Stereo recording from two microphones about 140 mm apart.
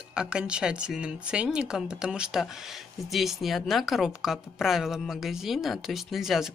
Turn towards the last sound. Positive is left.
turn(degrees=0)  # may be behind; listen again after turning